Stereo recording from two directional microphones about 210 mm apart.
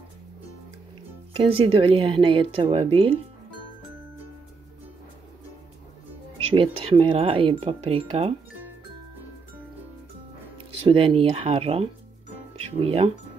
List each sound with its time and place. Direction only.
1.3 s speech: 25° right (ahead or behind)
6.5 s speech: 25° right (ahead or behind)
10.7 s speech: 30° right (ahead or behind)